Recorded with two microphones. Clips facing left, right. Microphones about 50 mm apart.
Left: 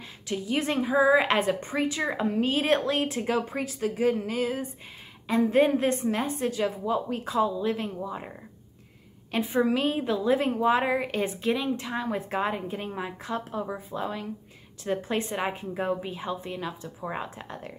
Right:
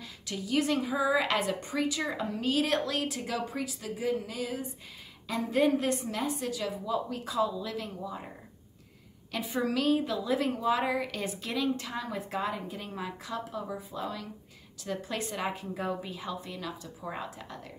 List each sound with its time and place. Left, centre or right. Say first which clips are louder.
0.3 s a woman's voice: left 1 dB; left
9.3 s a woman's voice: left 6 dB; left